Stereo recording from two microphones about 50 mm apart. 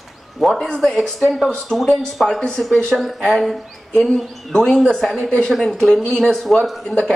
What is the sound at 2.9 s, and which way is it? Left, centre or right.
Speech, centre.